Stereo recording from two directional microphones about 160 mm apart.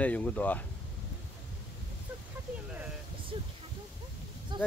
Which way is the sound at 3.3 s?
30° right (ahead or behind).